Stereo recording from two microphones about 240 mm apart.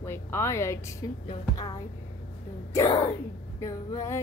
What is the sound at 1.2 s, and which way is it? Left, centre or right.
Speech, centre.